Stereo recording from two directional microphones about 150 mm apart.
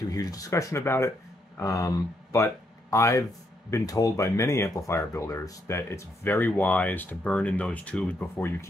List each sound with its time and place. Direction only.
0.1 s speech: 25° left (ahead or behind)